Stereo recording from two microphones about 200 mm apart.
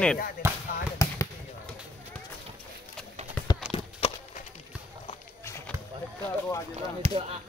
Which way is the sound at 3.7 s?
30° left (ahead or behind).